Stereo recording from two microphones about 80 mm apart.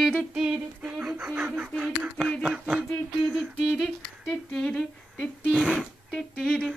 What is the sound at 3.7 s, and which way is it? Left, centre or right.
A woman's voice, centre.